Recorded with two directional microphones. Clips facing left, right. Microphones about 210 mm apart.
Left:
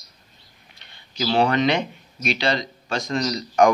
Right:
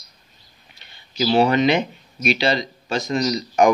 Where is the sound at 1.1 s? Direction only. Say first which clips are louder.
Right 3 dB; 5° right (ahead or behind).